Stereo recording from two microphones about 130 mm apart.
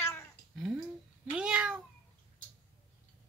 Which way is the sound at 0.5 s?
5° right (ahead or behind).